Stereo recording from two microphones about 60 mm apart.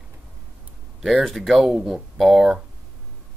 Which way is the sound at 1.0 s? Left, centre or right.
Centre.